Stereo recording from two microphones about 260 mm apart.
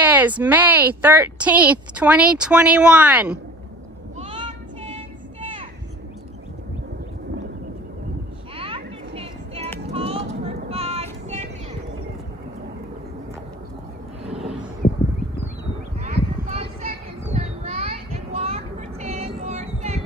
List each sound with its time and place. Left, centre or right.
0.0 s speech: centre
4.2 s child singing: centre
8.5 s children playing: right
9.8 s vehicle: right
16.4 s a sound: right
17.3 s children playing: right